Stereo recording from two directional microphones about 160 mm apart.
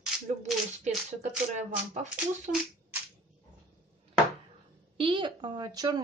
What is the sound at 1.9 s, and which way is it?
Speech, 45° right (ahead or behind).